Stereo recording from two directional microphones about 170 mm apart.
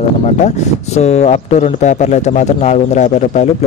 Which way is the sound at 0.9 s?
40° left (ahead or behind).